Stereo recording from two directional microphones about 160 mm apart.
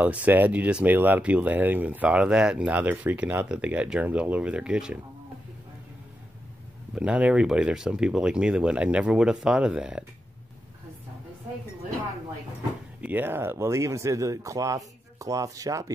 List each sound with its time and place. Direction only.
0.0 s speech: 10° right (ahead or behind)
7.0 s speech: 5° right (ahead or behind)
13.0 s speech: 10° right (ahead or behind)